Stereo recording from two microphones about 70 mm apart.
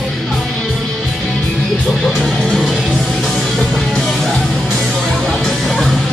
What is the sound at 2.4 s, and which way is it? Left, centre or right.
Music, centre.